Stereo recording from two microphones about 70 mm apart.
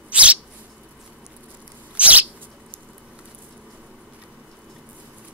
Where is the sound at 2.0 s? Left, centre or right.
Centre.